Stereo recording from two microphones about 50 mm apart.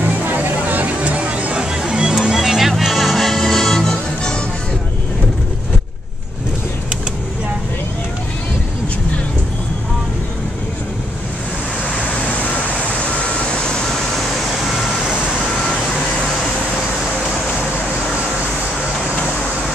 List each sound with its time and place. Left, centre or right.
0.0 s music: right; by 4.4 s centre